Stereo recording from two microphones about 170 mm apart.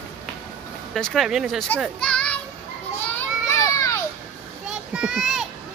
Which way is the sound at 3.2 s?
15° left (ahead or behind).